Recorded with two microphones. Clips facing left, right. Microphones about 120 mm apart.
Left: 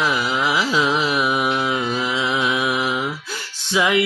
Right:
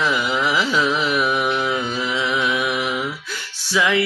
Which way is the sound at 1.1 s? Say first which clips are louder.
Even; 15° left (ahead or behind).